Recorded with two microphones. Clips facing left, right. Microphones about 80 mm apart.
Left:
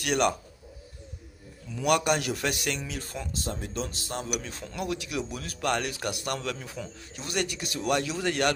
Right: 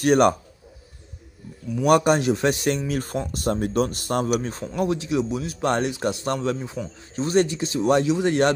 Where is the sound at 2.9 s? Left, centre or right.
Right.